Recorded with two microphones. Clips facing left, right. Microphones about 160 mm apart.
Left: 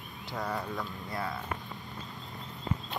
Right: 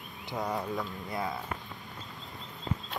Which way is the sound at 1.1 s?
20° right (ahead or behind).